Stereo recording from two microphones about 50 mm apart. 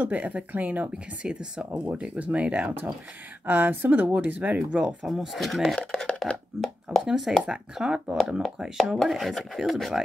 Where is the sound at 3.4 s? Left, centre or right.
Right.